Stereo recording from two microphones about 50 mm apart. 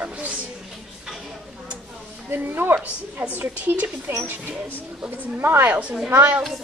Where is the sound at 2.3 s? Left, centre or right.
Right.